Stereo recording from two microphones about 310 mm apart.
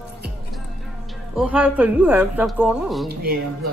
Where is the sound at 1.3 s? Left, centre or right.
Centre.